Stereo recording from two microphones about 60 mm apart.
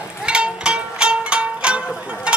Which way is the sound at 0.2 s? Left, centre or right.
Centre.